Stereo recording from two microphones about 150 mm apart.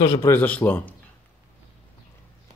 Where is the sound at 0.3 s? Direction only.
10° left (ahead or behind).